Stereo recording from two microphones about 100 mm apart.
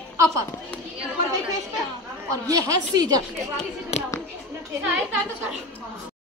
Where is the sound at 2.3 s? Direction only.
35° right (ahead or behind).